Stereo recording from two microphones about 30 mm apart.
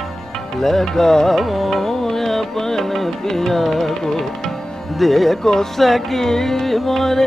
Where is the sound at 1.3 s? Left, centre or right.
Centre.